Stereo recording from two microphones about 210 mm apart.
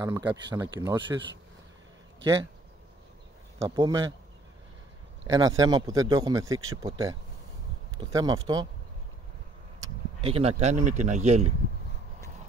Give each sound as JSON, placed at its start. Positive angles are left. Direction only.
{"t": 0.0, "sound": "speech", "side_deg": -20}
{"t": 3.6, "sound": "speech", "side_deg": -20}
{"t": 5.2, "sound": "a man's voice", "side_deg": -20}
{"t": 10.2, "sound": "speech", "side_deg": -30}